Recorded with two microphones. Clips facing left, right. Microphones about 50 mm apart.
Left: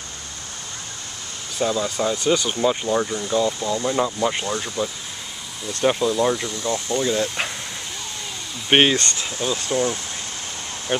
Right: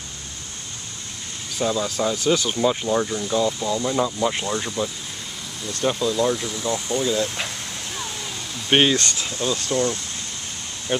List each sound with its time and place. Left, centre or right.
1.6 s speech: centre
5.8 s speech: left
6.5 s speech: centre
7.1 s speech: centre
8.6 s speech: left